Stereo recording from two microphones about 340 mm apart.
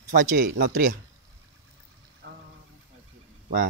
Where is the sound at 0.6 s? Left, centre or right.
Right.